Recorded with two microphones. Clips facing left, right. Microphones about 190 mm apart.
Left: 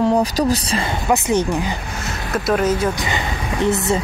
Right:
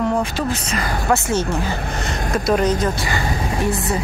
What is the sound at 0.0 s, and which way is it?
Speech, 35° left (ahead or behind).